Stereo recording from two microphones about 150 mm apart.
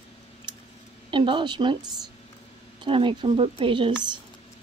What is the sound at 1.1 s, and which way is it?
Speech, 35° right (ahead or behind).